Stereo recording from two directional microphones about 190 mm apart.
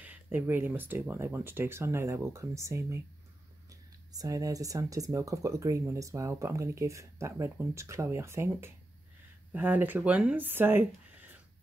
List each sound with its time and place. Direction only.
0.0 s speech: 10° right (ahead or behind)
4.1 s speech: 20° right (ahead or behind)